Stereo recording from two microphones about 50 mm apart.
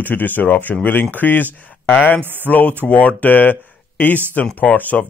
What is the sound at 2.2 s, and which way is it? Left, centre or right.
Speech, right.